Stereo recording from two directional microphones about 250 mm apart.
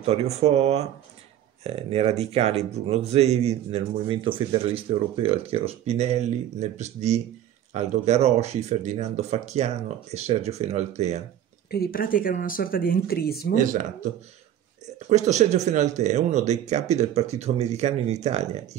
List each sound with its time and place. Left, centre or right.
0.0 s speech: right
11.7 s speech: left
15.0 s speech: right